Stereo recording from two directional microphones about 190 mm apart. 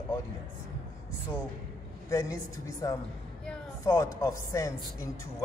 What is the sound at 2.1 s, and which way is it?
Speech, 15° left (ahead or behind).